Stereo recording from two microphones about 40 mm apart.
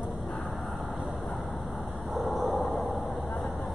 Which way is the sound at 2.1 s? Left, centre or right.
Centre.